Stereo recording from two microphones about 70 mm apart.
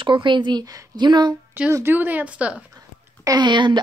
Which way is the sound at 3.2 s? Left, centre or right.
Right.